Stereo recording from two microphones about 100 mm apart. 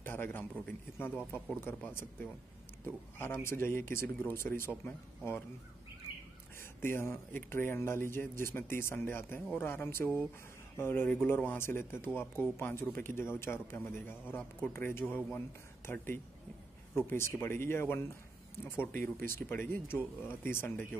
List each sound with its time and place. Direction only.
0.0 s a man's voice: 20° left (ahead or behind)
3.4 s a man's voice: 25° left (ahead or behind)
6.6 s a man's voice: 25° left (ahead or behind)